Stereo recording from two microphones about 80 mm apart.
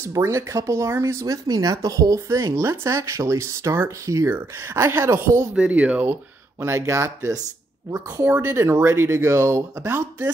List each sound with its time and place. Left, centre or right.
0.1 s speech: right
5.5 s speech: centre
6.6 s speech: right
8.4 s speech: right